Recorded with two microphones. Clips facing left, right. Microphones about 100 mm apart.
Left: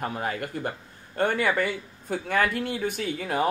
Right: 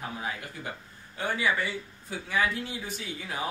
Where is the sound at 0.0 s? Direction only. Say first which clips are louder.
Left 6 dB; 60° left (ahead or behind).